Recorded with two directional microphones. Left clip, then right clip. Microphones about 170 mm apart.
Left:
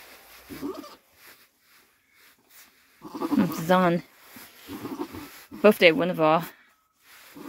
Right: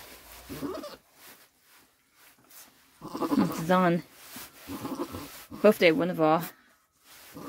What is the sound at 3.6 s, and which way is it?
Speech, 5° right (ahead or behind).